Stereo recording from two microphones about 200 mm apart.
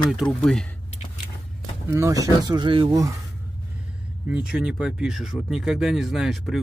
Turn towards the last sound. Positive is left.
turn(degrees=0)  # may be behind; listen again after turning